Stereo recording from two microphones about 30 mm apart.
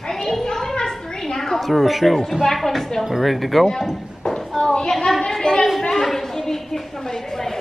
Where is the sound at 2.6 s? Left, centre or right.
Centre.